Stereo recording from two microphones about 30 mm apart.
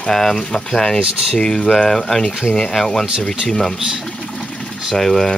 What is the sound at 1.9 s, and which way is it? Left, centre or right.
Speech, centre.